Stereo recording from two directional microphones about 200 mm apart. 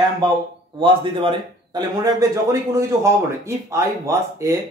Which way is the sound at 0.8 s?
25° right (ahead or behind).